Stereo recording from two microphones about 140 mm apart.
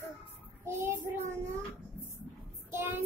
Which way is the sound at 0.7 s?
15° right (ahead or behind).